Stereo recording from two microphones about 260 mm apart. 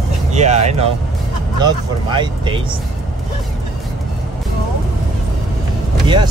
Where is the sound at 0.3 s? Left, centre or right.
Right.